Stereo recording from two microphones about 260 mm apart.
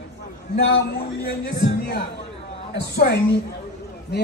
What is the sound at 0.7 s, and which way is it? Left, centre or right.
A man's voice, left.